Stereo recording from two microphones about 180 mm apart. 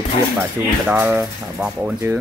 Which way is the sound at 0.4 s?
5° right (ahead or behind).